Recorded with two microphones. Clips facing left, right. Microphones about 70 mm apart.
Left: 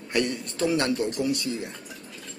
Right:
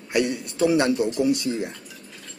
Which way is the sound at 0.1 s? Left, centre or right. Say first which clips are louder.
Right 3 dB; centre.